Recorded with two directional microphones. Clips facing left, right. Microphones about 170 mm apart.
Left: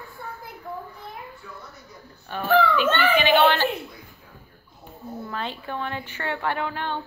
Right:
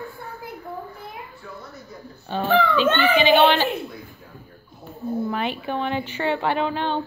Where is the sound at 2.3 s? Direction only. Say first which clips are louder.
Even; 25° right (ahead or behind).